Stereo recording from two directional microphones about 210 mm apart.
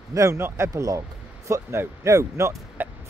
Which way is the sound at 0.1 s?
15° right (ahead or behind).